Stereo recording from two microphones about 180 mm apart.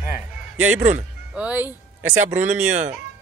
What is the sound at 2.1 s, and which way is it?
Speech, 40° right (ahead or behind).